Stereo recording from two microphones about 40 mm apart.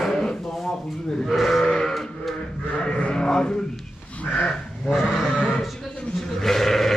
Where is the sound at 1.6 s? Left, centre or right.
Centre.